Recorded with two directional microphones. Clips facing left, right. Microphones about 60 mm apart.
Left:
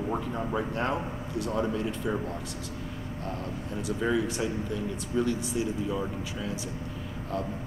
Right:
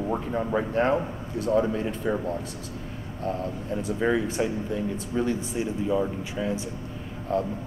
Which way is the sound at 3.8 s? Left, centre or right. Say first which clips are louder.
Right 2 dB; right.